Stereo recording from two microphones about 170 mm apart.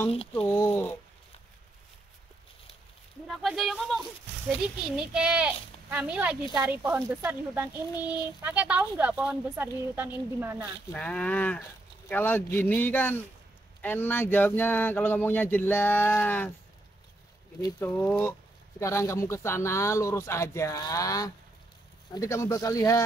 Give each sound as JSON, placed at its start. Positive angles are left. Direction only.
{"t": 0.3, "sound": "speech", "side_deg": 10}
{"t": 3.3, "sound": "a child's voice", "side_deg": 0}
{"t": 10.9, "sound": "speech", "side_deg": 5}
{"t": 17.7, "sound": "speech", "side_deg": 10}